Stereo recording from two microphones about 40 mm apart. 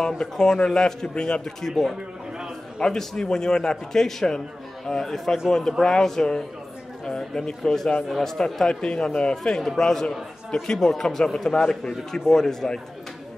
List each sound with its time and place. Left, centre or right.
0.2 s a man's voice: centre
1.6 s a man's voice: centre
9.4 s a man's voice: centre